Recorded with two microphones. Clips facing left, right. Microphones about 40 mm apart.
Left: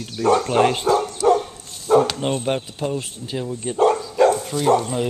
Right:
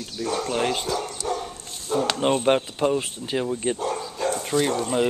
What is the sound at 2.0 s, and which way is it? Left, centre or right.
Speech, centre.